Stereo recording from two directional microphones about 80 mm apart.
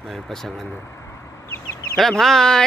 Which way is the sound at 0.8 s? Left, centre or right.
Left.